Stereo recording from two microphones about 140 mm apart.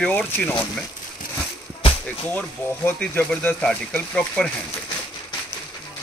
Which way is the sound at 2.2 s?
10° left (ahead or behind).